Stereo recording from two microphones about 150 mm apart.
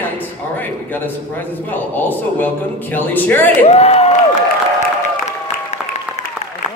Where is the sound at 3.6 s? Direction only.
45° left (ahead or behind).